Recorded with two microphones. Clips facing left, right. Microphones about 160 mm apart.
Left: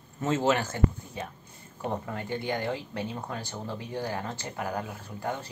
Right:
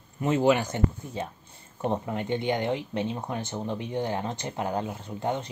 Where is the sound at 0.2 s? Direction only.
15° right (ahead or behind).